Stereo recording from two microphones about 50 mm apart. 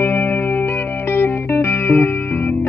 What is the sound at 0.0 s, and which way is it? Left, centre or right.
Music, left.